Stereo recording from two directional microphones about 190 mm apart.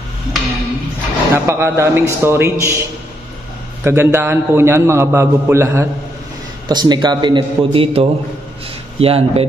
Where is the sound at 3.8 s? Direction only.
10° right (ahead or behind).